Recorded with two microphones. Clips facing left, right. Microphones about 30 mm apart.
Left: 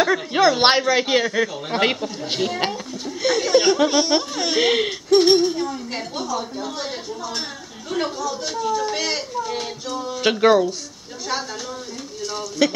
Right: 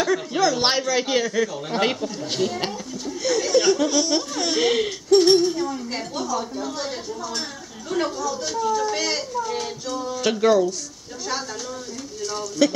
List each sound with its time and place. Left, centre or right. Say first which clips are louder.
0.0 s speech: left 4 dB; left
12.2 s speech: even; centre